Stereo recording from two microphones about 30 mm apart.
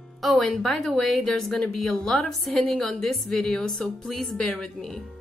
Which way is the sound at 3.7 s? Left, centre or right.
Centre.